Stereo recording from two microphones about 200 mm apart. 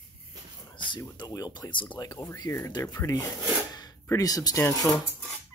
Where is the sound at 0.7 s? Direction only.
20° left (ahead or behind).